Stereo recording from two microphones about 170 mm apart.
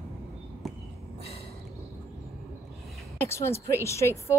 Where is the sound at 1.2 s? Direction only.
35° left (ahead or behind).